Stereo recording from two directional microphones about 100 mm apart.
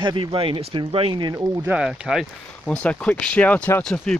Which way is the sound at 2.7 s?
15° left (ahead or behind).